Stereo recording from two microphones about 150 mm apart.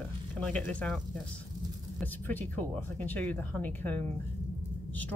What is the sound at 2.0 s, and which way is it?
Speech, 10° left (ahead or behind).